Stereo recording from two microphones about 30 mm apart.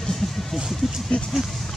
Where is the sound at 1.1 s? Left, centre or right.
Left.